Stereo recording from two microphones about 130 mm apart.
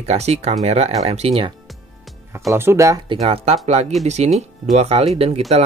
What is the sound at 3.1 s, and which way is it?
Speech, 50° right (ahead or behind).